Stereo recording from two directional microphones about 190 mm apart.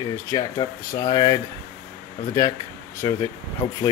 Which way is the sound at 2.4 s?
15° left (ahead or behind).